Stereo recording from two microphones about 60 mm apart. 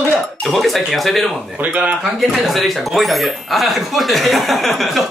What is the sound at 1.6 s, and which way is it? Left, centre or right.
Speech, right.